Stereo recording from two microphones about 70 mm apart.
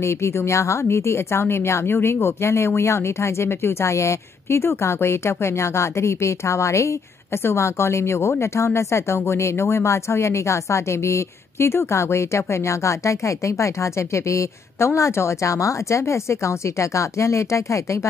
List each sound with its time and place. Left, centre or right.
0.0 s a woman's voice: left